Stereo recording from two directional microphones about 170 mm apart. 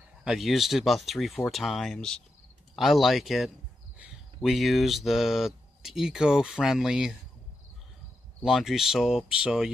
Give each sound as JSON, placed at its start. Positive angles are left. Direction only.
{"t": 0.2, "sound": "speech", "side_deg": 0}
{"t": 8.5, "sound": "speech", "side_deg": 0}